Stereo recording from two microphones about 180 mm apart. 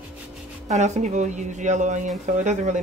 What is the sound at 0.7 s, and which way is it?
Speech, 40° right (ahead or behind).